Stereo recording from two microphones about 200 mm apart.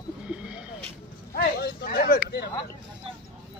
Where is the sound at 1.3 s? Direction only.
50° left (ahead or behind).